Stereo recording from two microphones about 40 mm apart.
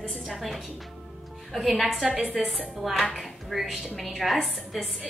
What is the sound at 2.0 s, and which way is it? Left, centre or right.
Speech, right.